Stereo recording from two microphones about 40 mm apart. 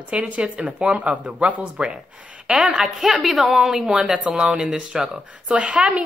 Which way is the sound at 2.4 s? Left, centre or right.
Right.